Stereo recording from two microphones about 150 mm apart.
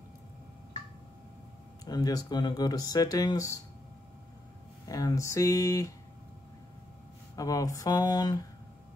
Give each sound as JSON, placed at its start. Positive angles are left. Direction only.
{"t": 1.9, "sound": "speech", "side_deg": 25}
{"t": 4.8, "sound": "speech", "side_deg": 25}
{"t": 7.3, "sound": "speech", "side_deg": 25}